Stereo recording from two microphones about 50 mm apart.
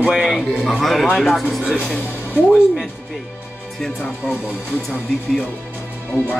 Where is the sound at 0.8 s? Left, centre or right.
Centre.